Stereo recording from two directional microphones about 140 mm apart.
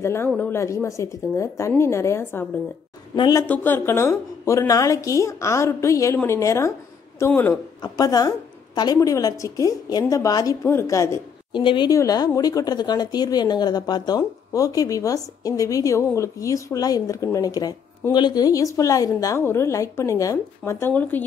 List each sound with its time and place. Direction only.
0.0 s a woman's voice: 20° left (ahead or behind)
3.4 s a woman's voice: 10° left (ahead or behind)
7.8 s a woman's voice: 25° left (ahead or behind)
11.5 s a woman's voice: 35° left (ahead or behind)
20.9 s a woman's voice: 10° left (ahead or behind)